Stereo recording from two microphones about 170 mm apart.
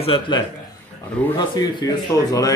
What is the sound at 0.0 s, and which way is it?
Speech, 30° left (ahead or behind).